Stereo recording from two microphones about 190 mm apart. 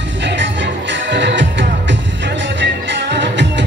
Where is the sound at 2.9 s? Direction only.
65° right (ahead or behind).